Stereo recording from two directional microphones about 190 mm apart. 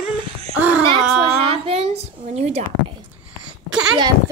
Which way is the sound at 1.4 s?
30° right (ahead or behind).